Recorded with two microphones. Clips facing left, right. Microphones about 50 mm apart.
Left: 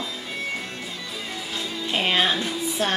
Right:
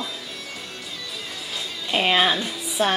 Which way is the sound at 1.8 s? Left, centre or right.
Centre.